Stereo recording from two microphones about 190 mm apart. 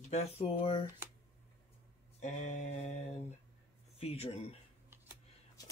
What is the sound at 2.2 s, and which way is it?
Speech, 40° left (ahead or behind).